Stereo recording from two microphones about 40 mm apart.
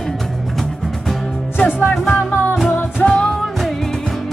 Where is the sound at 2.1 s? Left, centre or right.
Left.